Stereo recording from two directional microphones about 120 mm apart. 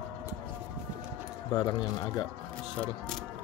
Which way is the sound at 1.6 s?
35° left (ahead or behind).